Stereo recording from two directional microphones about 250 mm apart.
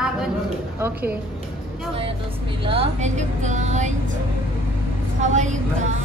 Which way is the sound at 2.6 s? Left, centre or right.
Right.